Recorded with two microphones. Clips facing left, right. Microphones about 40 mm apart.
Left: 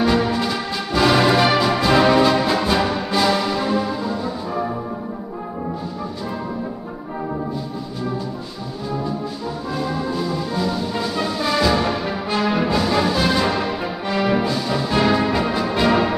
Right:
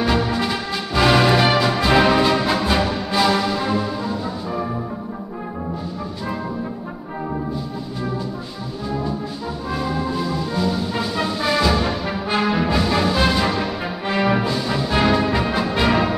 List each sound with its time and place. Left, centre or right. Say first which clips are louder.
0.0 s music: left 1 dB; centre
9.7 s music: right 1 dB; centre
14.4 s brass instrument: left 1 dB; centre
15.1 s music: even; centre
15.5 s brass instrument: left 1 dB; centre